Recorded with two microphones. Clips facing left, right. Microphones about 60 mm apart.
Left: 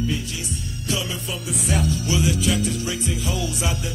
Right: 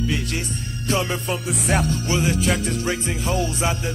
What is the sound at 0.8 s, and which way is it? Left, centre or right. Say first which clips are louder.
Music: right 5 dB; right.